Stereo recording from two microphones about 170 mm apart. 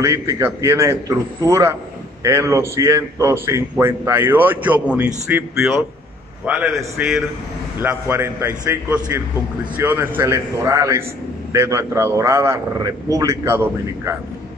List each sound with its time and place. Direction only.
0.0 s a man's voice: 15° right (ahead or behind)